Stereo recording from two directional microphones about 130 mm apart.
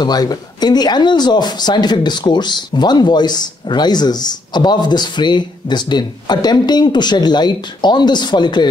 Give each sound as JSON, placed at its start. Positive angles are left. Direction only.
{"t": 0.0, "sound": "speech", "side_deg": 30}